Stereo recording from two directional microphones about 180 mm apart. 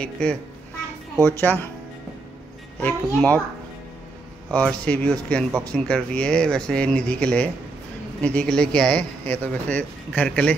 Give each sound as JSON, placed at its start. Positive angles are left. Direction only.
{"t": 0.0, "sound": "speech", "side_deg": 5}
{"t": 2.8, "sound": "speech", "side_deg": 10}
{"t": 4.5, "sound": "speech", "side_deg": 5}
{"t": 5.5, "sound": "speech", "side_deg": -20}
{"t": 5.9, "sound": "speech", "side_deg": 5}